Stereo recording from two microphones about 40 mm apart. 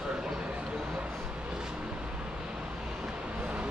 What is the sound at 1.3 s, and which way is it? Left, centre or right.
Vehicle, right.